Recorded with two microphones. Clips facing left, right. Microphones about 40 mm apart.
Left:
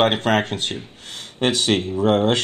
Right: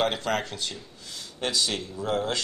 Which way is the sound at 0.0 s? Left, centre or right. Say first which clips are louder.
Left 8 dB; left.